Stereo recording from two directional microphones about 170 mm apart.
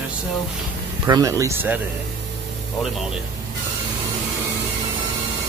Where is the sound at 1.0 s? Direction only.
20° right (ahead or behind).